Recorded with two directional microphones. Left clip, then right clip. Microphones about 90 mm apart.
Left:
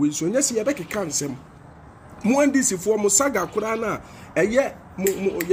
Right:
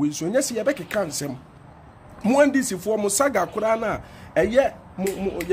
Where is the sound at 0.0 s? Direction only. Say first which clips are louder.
Left 1 dB; 20° right (ahead or behind).